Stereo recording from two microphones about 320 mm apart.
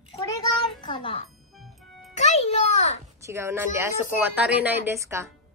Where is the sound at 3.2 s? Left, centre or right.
Centre.